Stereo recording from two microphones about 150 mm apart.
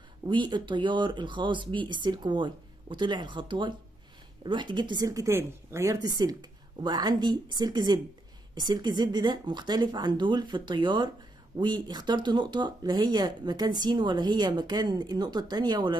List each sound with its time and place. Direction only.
0.3 s speech: 30° right (ahead or behind)